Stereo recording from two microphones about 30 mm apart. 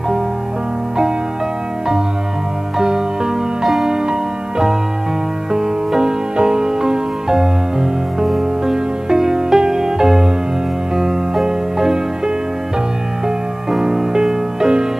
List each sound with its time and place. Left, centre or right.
3.8 s music: centre
5.9 s music: right
11.4 s music: right
13.7 s music: centre